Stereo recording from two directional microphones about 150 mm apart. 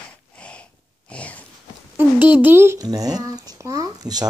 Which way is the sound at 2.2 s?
10° right (ahead or behind).